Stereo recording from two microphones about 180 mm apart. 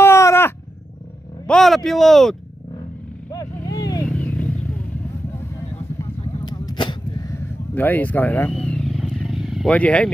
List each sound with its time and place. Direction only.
0.0 s a sound: 15° left (ahead or behind)
1.5 s speech: centre (ahead or behind)
3.3 s vehicle: 20° left (ahead or behind)
4.1 s wild animals: 10° left (ahead or behind)
5.9 s whip: 20° left (ahead or behind); by 9.8 s centre (ahead or behind)
9.8 s speech: 10° left (ahead or behind)